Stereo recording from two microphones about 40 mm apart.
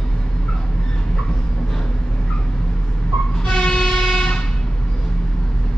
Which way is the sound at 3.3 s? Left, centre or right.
Left.